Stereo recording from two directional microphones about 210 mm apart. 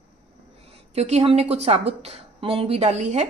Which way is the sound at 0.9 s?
30° right (ahead or behind).